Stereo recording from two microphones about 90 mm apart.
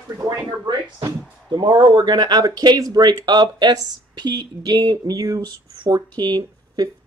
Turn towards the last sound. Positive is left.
turn(degrees=-50)  # may be behind; listen again after turning